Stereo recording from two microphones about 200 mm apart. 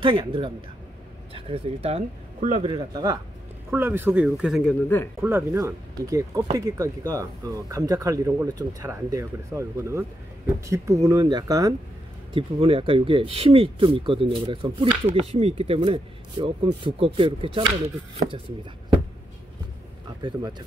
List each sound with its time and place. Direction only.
0.0 s a man's voice: 25° right (ahead or behind)
12.4 s speech: 30° right (ahead or behind)
20.2 s speech: 25° right (ahead or behind)